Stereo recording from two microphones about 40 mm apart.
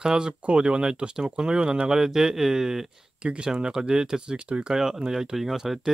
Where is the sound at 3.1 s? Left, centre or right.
Right.